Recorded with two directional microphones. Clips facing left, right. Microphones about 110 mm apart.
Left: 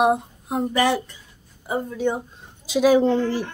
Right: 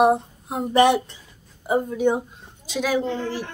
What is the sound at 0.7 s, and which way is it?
A woman's voice, 20° right (ahead or behind).